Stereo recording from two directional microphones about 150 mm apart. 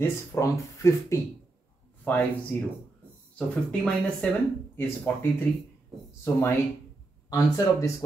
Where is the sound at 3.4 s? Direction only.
10° left (ahead or behind).